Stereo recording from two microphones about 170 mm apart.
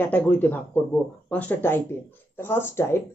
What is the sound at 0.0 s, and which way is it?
Speech, 10° left (ahead or behind).